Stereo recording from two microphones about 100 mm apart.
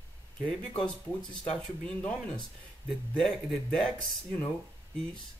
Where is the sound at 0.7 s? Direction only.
55° left (ahead or behind).